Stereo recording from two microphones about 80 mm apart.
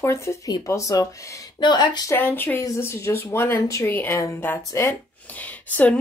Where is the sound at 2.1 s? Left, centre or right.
Left.